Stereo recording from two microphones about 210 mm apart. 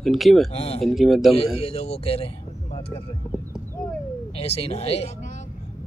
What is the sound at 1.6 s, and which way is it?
Speech, 30° left (ahead or behind).